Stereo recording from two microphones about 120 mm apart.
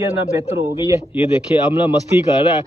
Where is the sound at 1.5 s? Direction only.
15° right (ahead or behind).